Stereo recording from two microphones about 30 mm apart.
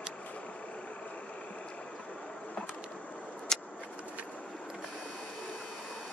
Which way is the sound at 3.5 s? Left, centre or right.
Centre.